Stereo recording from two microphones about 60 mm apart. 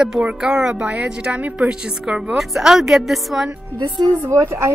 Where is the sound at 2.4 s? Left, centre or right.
Centre.